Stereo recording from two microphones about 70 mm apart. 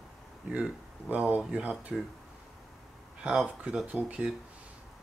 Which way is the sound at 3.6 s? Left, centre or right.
Centre.